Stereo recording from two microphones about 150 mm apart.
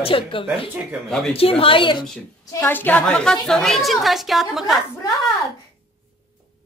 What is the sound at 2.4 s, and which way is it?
A woman's voice, 15° left (ahead or behind).